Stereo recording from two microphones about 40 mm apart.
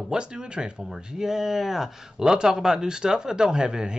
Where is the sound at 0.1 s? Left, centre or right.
Centre.